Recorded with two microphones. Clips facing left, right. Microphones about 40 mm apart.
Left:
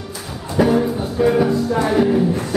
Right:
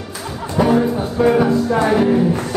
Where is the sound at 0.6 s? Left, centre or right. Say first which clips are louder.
Right 1 dB; centre.